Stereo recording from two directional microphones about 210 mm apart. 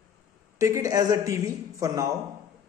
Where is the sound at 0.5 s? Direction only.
15° right (ahead or behind).